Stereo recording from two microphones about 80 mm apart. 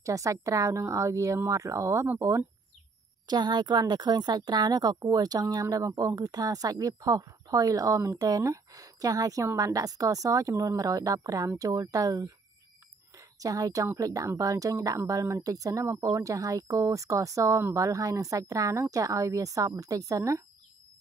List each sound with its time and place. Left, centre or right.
0.0 s speech: right
3.3 s speech: right
13.1 s a sound: right
13.9 s speech: right